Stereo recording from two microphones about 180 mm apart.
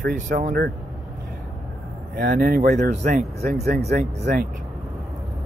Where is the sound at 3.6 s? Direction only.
60° right (ahead or behind).